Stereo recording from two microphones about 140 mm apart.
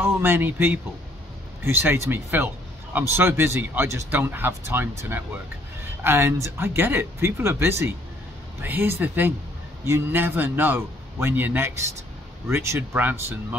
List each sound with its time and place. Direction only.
0.0 s speech: 15° right (ahead or behind)